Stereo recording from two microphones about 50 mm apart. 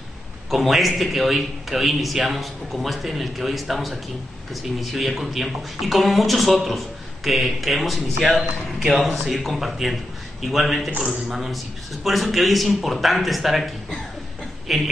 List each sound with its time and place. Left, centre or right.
0.5 s a man's voice: centre
14.7 s a man's voice: centre